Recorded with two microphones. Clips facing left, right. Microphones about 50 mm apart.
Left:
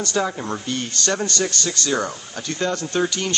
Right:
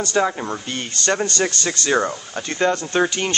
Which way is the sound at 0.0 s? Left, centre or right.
Right.